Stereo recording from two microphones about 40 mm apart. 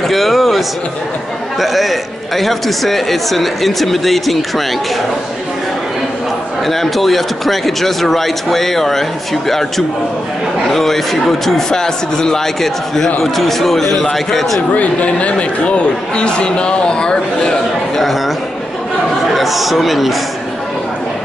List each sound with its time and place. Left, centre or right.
0.1 s a sound: centre
1.6 s a man's voice: centre
6.6 s a man's voice: centre
14.7 s speech: left; by 17.6 s centre
17.9 s a man's voice: centre
19.3 s a man's voice: centre